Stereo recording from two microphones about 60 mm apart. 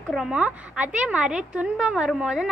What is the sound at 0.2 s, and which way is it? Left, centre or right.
A woman's voice, right.